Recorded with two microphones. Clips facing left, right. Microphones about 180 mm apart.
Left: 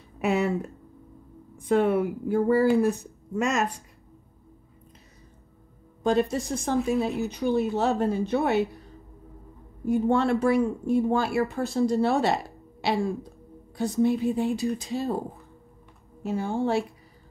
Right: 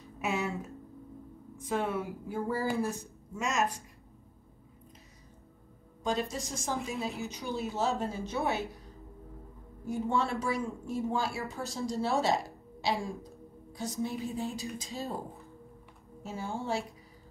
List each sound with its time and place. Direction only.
0.2 s speech: 60° left (ahead or behind)
1.7 s speech: 60° left (ahead or behind)
6.0 s speech: 60° left (ahead or behind)
9.8 s speech: 60° left (ahead or behind)
16.2 s speech: 65° left (ahead or behind)